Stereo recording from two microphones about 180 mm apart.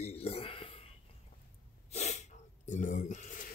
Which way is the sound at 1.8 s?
40° left (ahead or behind).